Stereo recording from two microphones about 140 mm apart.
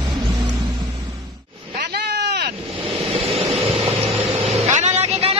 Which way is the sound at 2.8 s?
40° right (ahead or behind).